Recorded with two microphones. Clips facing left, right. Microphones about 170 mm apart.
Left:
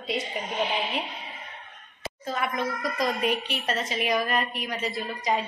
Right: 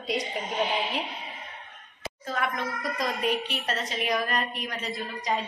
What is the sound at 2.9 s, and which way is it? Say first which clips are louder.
A woman's voice: left 1 dB; centre (ahead or behind).